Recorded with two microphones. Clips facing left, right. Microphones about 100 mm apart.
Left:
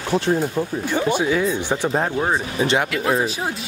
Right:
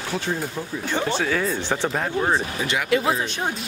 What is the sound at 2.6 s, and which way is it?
Speech, 30° left (ahead or behind).